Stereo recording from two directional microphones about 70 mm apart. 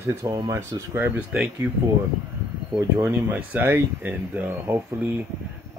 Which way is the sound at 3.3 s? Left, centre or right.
Right.